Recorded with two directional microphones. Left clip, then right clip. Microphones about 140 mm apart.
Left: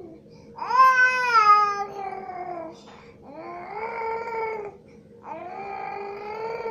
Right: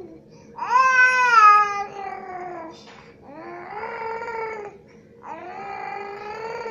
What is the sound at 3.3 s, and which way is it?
Cat, 20° left (ahead or behind).